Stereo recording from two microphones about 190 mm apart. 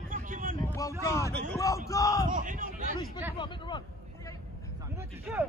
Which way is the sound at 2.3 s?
45° right (ahead or behind).